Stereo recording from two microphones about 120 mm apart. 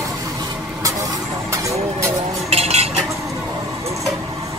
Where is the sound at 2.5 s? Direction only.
60° right (ahead or behind).